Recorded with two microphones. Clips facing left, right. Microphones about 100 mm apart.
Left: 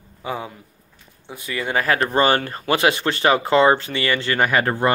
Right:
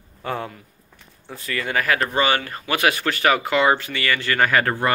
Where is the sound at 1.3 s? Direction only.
20° left (ahead or behind).